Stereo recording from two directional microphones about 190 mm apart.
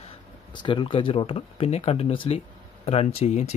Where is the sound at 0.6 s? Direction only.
25° left (ahead or behind).